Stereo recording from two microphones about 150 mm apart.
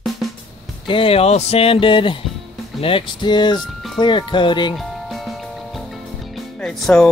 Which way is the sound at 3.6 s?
5° left (ahead or behind).